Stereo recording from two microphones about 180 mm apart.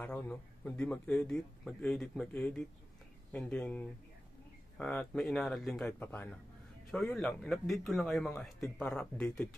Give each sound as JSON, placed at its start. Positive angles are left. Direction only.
{"t": 0.0, "sound": "speech", "side_deg": 10}